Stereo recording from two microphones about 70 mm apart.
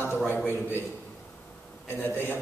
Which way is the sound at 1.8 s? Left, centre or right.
Left.